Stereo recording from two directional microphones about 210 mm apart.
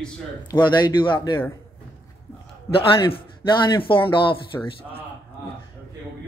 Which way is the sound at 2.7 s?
25° left (ahead or behind).